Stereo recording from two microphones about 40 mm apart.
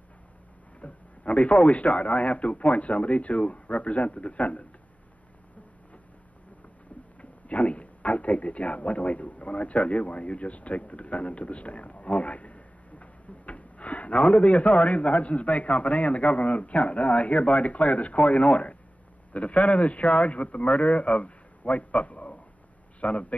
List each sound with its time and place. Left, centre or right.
0.7 s a man's voice: left
7.2 s a man's voice: left
22.9 s a sound: left